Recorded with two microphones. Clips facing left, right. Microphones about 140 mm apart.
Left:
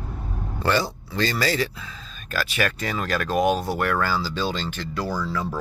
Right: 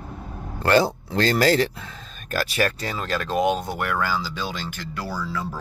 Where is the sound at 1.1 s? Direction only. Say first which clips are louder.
Right 5 dB; 65° right (ahead or behind).